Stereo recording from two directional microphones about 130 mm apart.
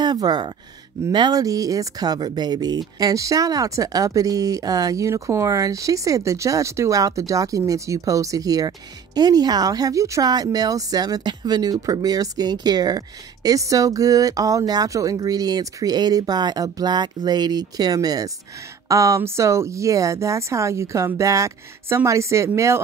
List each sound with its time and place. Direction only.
0.0 s speech: 35° right (ahead or behind)